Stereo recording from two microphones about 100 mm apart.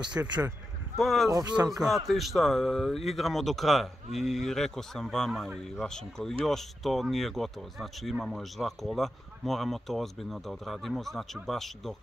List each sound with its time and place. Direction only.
0.2 s speech: 25° right (ahead or behind)
0.9 s speech: centre (ahead or behind)